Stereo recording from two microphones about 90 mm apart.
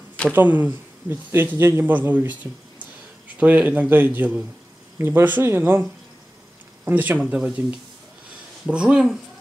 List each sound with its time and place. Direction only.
0.3 s speech: 20° right (ahead or behind)
3.3 s speech: 15° right (ahead or behind)
8.6 s speech: 10° right (ahead or behind)